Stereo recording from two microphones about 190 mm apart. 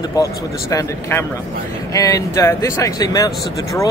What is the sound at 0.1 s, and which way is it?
Speech, 20° left (ahead or behind).